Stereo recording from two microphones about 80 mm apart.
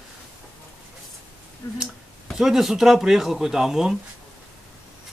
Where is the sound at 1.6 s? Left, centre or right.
Left.